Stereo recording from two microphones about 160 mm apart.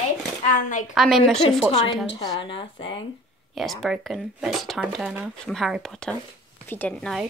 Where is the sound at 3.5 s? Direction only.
Centre (ahead or behind).